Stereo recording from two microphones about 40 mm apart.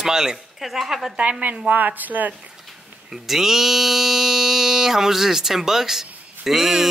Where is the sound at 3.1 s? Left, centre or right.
Centre.